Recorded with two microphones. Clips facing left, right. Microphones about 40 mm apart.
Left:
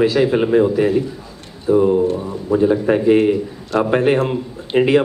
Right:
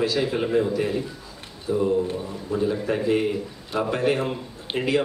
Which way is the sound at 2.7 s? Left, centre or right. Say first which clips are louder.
Left 8 dB; left.